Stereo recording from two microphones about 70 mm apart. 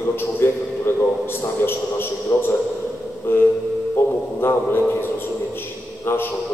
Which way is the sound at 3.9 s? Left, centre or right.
Left.